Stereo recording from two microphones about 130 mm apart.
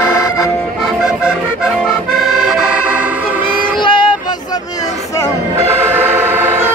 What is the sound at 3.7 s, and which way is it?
Vehicle, 40° left (ahead or behind).